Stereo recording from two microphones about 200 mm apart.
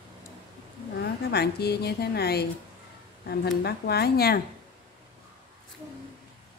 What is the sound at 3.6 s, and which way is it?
Speech, 50° left (ahead or behind).